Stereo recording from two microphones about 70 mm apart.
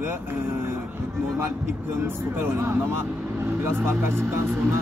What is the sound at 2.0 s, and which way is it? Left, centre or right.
Speech, right.